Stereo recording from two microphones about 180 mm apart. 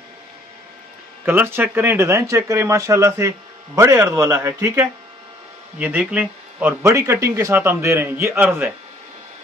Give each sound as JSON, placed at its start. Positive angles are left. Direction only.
{"t": 1.2, "sound": "speech", "side_deg": -10}